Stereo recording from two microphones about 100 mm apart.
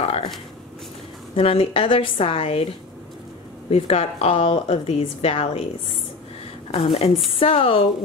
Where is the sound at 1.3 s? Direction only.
70° left (ahead or behind).